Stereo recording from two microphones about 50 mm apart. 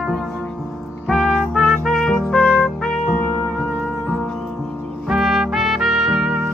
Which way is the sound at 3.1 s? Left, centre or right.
Left.